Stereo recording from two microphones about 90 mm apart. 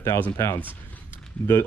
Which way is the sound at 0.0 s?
30° left (ahead or behind).